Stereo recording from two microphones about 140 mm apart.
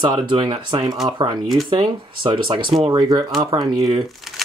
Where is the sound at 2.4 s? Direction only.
35° right (ahead or behind).